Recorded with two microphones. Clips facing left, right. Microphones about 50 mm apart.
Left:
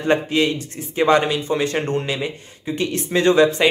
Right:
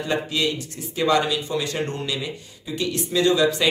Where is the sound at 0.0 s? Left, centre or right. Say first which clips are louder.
Left 6 dB; left.